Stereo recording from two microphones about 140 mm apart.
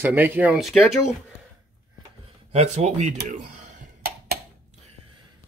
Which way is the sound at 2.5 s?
55° right (ahead or behind).